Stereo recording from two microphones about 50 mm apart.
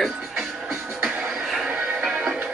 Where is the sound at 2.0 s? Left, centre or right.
Centre.